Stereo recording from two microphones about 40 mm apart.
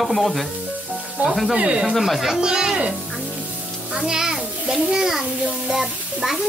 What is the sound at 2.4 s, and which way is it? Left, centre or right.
Speech, centre.